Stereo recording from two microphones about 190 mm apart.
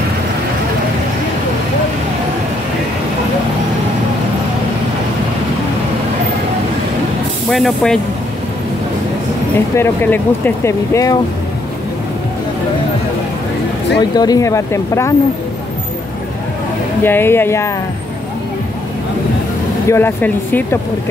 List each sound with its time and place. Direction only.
7.4 s speech: centre (ahead or behind)
9.8 s speech: 10° left (ahead or behind)
13.9 s speech: 20° left (ahead or behind)
17.0 s speech: 10° left (ahead or behind)
19.9 s speech: 10° left (ahead or behind)